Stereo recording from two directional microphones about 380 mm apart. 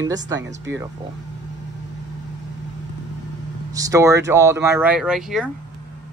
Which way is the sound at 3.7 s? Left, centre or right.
Centre.